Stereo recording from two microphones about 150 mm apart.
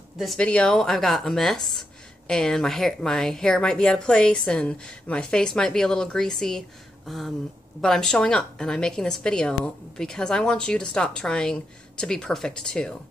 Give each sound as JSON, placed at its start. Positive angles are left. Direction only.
{"t": 0.2, "sound": "speech", "side_deg": 5}